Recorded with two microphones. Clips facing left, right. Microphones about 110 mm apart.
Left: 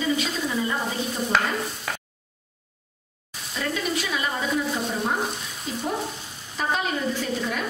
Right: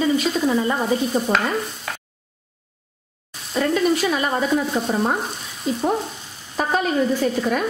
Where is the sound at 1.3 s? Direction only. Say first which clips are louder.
Left 2 dB; centre (ahead or behind).